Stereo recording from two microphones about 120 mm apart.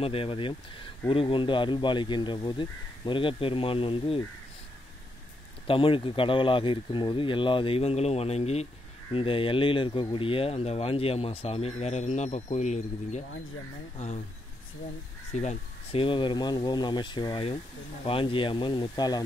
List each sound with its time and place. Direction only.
0.0 s speech: 50° left (ahead or behind)
5.7 s speech: 45° left (ahead or behind)
9.1 s speech: 45° left (ahead or behind); by 14.2 s 70° left (ahead or behind)
15.3 s speech: 75° left (ahead or behind)
15.9 s speech: 45° left (ahead or behind)